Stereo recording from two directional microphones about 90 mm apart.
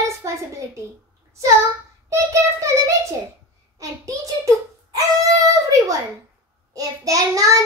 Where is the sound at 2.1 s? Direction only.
35° right (ahead or behind).